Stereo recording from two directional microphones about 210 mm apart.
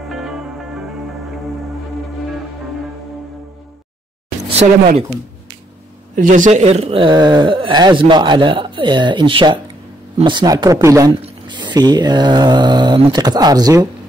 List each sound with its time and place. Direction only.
0.1 s music: centre (ahead or behind)
4.6 s speech: 30° right (ahead or behind)
6.1 s speech: 40° right (ahead or behind); by 13.8 s 20° right (ahead or behind)